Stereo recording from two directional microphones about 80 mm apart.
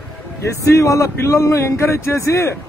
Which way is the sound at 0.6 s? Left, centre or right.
Left.